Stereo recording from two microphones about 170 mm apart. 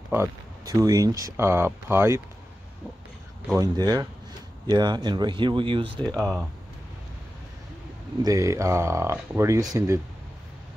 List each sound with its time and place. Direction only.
0.1 s speech: 20° right (ahead or behind)
3.5 s speech: 25° right (ahead or behind)
5.9 s speech: 5° left (ahead or behind)
8.2 s speech: 20° right (ahead or behind)